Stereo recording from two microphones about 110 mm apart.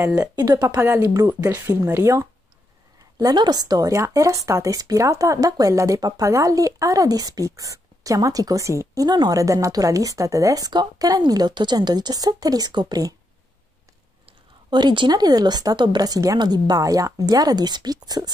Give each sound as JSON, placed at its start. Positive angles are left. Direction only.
{"t": 0.0, "sound": "speech", "side_deg": -25}
{"t": 0.4, "sound": "speech", "side_deg": -40}
{"t": 0.7, "sound": "speech", "side_deg": -25}
{"t": 3.2, "sound": "speech", "side_deg": -35}
{"t": 14.7, "sound": "speech", "side_deg": -45}